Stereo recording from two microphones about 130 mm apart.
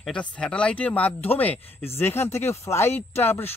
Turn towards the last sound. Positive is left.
turn(degrees=15)  # may be behind; listen again after turning